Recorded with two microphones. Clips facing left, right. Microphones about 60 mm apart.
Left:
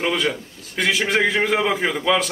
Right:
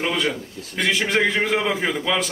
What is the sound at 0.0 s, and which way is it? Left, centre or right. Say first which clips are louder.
A man's voice: left 1 dB; centre.